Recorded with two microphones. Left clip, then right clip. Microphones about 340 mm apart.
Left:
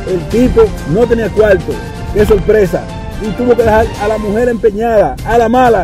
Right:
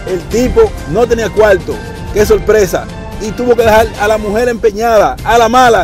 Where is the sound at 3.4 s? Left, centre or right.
Right.